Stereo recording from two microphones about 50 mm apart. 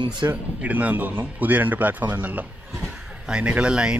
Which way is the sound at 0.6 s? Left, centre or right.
Right.